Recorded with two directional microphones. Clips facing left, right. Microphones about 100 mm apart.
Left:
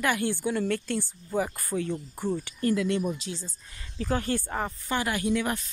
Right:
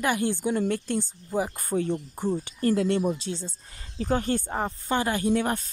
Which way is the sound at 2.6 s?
40° right (ahead or behind).